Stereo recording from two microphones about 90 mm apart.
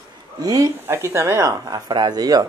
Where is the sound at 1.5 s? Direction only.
50° right (ahead or behind).